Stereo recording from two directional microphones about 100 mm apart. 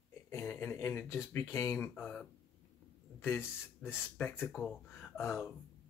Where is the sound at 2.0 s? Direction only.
5° left (ahead or behind).